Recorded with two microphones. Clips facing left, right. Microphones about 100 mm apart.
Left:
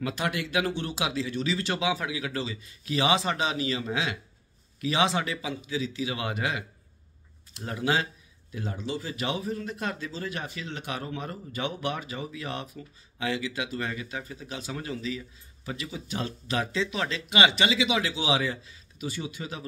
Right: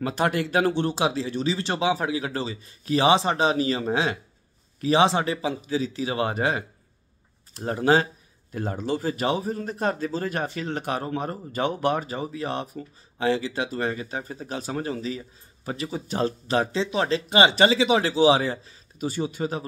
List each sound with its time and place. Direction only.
0.0 s speech: 40° right (ahead or behind)